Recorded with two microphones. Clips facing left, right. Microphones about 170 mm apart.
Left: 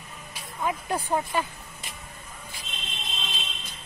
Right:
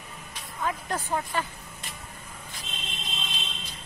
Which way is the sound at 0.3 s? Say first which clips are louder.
Left 2 dB; 10° left (ahead or behind).